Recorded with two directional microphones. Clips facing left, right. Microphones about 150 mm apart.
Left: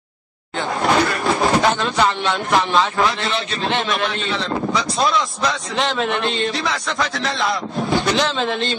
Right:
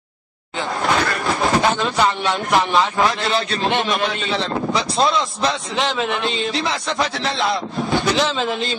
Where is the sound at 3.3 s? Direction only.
40° right (ahead or behind).